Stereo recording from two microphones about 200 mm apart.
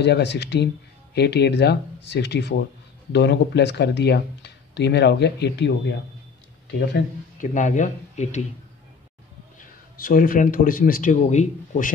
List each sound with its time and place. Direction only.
0.0 s speech: 60° left (ahead or behind)
7.3 s speech: 40° left (ahead or behind)
9.6 s speech: 45° left (ahead or behind)